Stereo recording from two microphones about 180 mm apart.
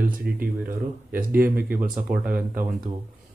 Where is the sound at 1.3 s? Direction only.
10° right (ahead or behind).